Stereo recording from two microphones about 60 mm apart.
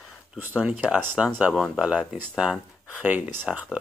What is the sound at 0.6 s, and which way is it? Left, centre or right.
Speech, centre.